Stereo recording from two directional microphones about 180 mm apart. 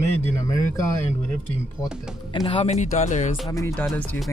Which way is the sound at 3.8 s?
Centre (ahead or behind).